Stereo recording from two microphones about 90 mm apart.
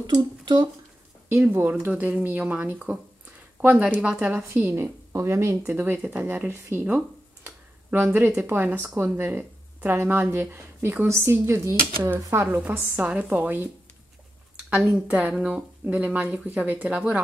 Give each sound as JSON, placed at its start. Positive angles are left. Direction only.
{"t": 0.0, "sound": "speech", "side_deg": -50}
{"t": 1.5, "sound": "a woman's voice", "side_deg": -25}
{"t": 1.9, "sound": "a woman's voice", "side_deg": -15}
{"t": 7.4, "sound": "a sound", "side_deg": -25}
{"t": 8.3, "sound": "a woman's voice", "side_deg": -25}
{"t": 12.6, "sound": "a woman's voice", "side_deg": -20}
{"t": 14.8, "sound": "a woman's voice", "side_deg": -10}